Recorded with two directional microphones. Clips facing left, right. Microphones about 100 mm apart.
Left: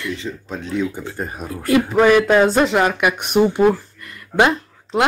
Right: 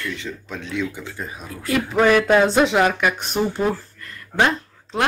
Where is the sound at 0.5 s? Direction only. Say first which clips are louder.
Left 4 dB; 35° left (ahead or behind).